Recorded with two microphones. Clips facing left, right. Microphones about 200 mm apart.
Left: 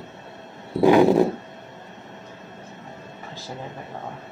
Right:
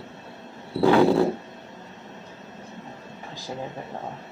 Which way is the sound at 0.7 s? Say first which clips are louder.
Left 3 dB; 15° left (ahead or behind).